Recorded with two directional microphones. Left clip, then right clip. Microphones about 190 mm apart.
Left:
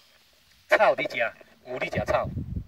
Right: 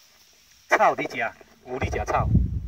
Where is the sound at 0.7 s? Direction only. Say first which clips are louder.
Right 1 dB; 40° left (ahead or behind).